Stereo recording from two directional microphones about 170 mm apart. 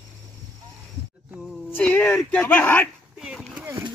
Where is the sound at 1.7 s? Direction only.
10° left (ahead or behind).